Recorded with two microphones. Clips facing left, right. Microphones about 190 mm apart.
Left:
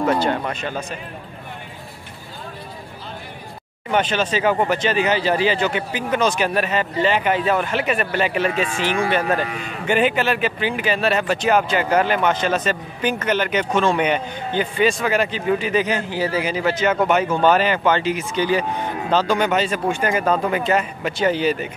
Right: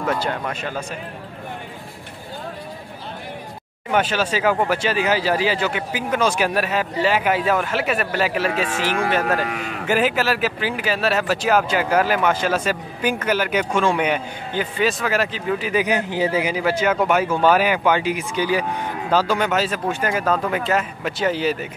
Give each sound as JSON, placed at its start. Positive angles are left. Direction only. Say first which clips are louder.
{"t": 0.2, "sound": "speech", "louder": "left 3 dB", "side_deg": -5}
{"t": 3.9, "sound": "speech", "louder": "even", "side_deg": -5}
{"t": 8.5, "sound": "speech", "louder": "left 1 dB", "side_deg": -45}
{"t": 9.8, "sound": "speech", "louder": "left 1 dB", "side_deg": -5}